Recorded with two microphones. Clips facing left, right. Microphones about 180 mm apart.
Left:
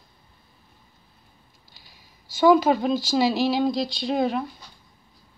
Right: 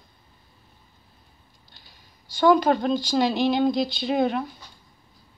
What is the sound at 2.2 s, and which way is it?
Speech, 5° left (ahead or behind).